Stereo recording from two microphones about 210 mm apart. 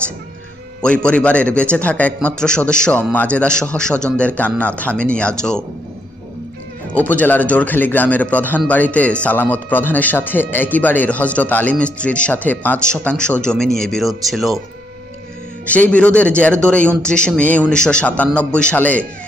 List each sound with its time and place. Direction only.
0.8 s a man's voice: 5° left (ahead or behind)
6.9 s a man's voice: 5° left (ahead or behind)
15.6 s a man's voice: 5° left (ahead or behind)